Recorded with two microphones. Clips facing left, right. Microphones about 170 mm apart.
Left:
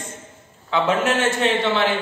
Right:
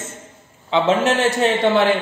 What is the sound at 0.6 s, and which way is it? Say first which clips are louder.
Speech: right 3 dB; 25° right (ahead or behind).